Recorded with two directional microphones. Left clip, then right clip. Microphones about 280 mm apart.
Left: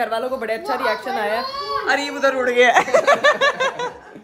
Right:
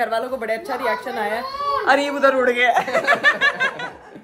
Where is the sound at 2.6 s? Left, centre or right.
Left.